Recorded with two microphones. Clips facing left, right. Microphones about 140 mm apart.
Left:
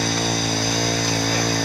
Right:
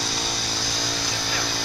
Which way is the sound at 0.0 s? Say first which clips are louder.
Left 8 dB; 55° left (ahead or behind).